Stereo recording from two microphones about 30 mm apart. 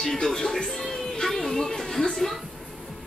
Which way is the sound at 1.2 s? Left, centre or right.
Centre.